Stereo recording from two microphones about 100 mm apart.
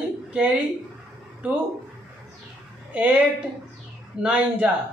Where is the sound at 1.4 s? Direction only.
15° right (ahead or behind).